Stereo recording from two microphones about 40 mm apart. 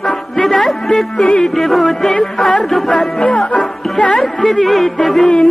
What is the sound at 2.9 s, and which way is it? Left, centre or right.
Speech, left.